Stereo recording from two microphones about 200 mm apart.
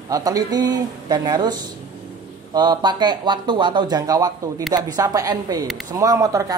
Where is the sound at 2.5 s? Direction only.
20° right (ahead or behind).